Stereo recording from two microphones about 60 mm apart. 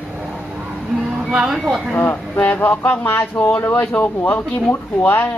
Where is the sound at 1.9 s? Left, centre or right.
Left.